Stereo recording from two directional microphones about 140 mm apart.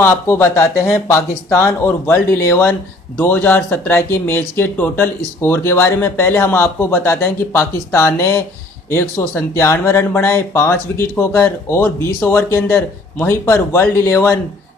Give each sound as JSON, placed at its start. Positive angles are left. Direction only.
{"t": 0.0, "sound": "speech", "side_deg": 20}